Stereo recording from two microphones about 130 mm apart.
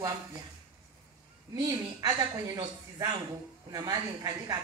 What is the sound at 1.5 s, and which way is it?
A man's voice, 30° right (ahead or behind).